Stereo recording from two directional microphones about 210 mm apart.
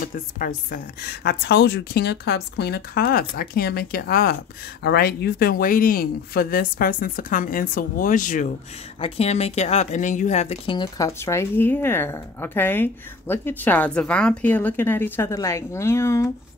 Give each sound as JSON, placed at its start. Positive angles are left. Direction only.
{"t": 0.0, "sound": "a woman's voice", "side_deg": 40}